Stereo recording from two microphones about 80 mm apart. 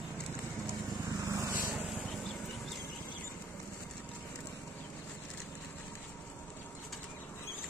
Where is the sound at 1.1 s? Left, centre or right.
Right.